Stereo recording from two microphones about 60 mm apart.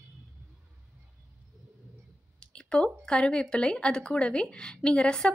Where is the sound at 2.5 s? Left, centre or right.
Centre.